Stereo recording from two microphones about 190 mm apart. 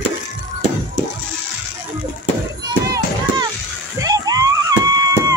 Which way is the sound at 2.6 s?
20° right (ahead or behind).